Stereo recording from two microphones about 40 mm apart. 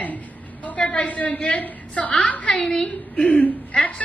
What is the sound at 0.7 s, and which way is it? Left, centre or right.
A woman's voice, left.